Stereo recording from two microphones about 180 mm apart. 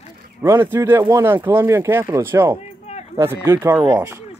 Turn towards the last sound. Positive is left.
turn(degrees=-15)  # may be behind; listen again after turning